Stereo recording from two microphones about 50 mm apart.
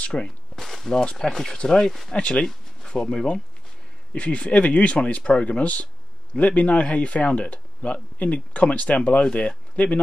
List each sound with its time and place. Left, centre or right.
0.0 s speech: left
0.6 s walk: centre
1.0 s speech: centre
2.1 s speech: left
2.4 s speech: centre; by 9.9 s left